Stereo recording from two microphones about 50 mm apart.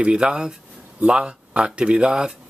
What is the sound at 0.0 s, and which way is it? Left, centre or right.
Speech, centre.